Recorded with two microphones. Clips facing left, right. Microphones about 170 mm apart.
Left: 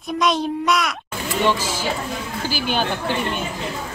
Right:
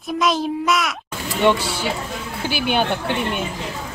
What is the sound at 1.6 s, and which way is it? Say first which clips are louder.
Speech: even; 65° right (ahead or behind).